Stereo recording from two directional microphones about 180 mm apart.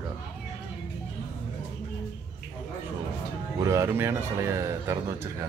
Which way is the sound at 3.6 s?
15° right (ahead or behind).